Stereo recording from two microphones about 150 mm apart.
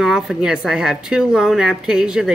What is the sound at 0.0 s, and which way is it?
A woman's voice, 5° right (ahead or behind).